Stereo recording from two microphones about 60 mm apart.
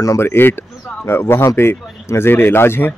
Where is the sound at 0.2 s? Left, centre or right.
Left.